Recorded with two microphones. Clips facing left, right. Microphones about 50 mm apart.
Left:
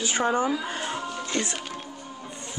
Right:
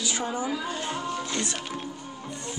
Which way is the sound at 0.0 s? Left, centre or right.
Left.